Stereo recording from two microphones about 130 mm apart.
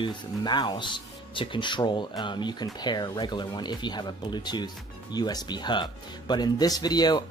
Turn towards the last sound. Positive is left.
turn(degrees=30)  # may be behind; listen again after turning